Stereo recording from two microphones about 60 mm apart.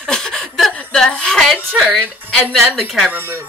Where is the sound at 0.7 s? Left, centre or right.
Centre.